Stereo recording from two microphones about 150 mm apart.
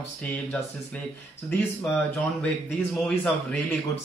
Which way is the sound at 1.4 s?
5° left (ahead or behind).